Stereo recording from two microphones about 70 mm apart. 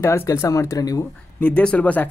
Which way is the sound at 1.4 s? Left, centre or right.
Centre.